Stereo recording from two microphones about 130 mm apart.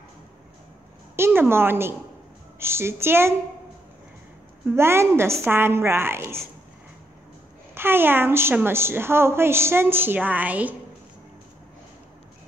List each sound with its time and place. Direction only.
1.1 s a woman's voice: 15° right (ahead or behind)
4.6 s a woman's voice: 20° right (ahead or behind)
7.7 s a woman's voice: 15° right (ahead or behind)